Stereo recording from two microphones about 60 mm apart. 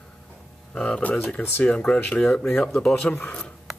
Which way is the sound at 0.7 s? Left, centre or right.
Centre.